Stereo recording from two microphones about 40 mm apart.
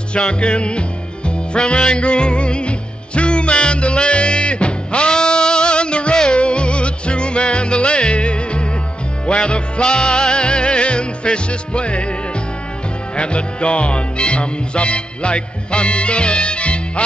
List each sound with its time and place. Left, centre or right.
0.1 s music: left
13.1 s music: left